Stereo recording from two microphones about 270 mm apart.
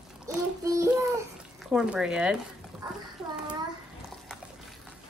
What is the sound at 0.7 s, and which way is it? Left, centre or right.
A child's voice, centre.